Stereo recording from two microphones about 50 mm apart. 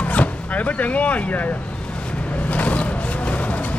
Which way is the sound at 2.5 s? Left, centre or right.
Left.